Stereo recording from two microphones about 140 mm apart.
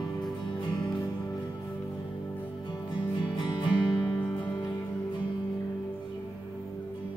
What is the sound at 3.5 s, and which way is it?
Music, 35° left (ahead or behind).